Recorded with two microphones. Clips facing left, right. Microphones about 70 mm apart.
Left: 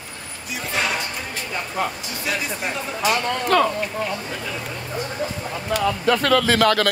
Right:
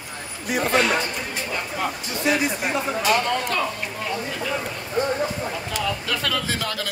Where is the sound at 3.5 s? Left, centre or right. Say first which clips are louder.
Left 12 dB; left.